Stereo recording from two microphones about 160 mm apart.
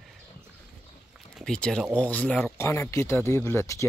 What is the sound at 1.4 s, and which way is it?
Speech, 5° left (ahead or behind).